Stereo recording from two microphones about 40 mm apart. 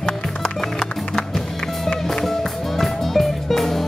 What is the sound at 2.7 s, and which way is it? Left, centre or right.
Music, centre.